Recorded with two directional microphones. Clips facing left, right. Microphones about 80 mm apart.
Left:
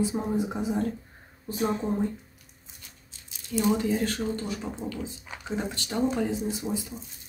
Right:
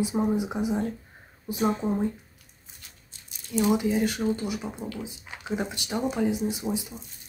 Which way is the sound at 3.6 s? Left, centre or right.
Centre.